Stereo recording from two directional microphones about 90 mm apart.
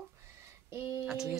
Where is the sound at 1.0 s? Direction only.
5° right (ahead or behind).